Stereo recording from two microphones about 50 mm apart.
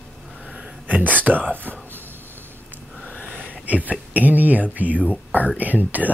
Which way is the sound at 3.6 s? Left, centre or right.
Right.